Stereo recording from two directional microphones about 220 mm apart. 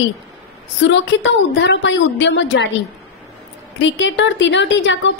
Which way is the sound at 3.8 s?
55° left (ahead or behind).